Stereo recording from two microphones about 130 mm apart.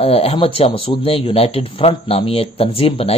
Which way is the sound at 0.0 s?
50° left (ahead or behind).